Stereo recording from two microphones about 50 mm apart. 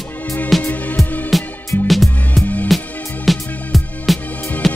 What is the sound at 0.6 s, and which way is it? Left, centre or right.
Music, left.